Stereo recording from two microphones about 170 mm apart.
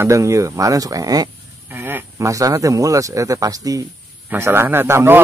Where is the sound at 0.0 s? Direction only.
15° right (ahead or behind).